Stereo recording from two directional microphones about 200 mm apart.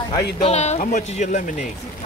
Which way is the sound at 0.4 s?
30° left (ahead or behind).